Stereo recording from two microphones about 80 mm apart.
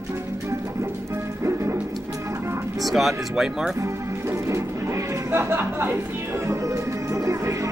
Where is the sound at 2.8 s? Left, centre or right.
Centre.